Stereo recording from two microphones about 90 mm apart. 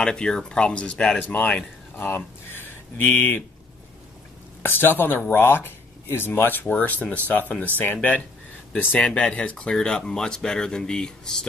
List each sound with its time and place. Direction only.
0.0 s speech: 10° left (ahead or behind)
4.6 s speech: 20° left (ahead or behind)